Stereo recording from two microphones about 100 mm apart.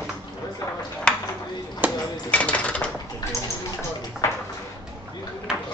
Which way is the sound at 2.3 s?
15° left (ahead or behind).